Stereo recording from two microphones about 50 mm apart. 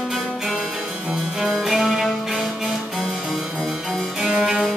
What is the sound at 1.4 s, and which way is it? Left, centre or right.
Music, centre.